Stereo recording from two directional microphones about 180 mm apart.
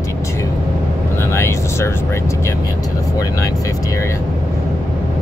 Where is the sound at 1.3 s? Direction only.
15° left (ahead or behind).